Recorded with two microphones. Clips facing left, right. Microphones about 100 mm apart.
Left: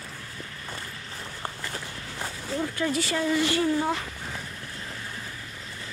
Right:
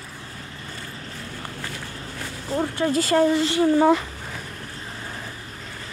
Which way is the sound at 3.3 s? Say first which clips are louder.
Right 4 dB; 25° right (ahead or behind).